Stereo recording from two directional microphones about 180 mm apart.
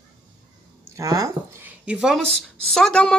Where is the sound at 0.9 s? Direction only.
20° right (ahead or behind).